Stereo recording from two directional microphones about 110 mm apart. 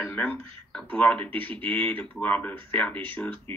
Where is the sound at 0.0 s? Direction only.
20° left (ahead or behind).